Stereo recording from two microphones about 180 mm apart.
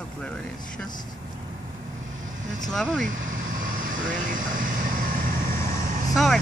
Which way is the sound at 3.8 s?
45° right (ahead or behind).